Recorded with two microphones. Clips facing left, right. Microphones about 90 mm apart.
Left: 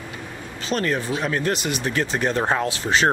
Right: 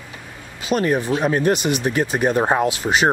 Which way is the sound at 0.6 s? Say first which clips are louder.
Right 4 dB; 10° right (ahead or behind).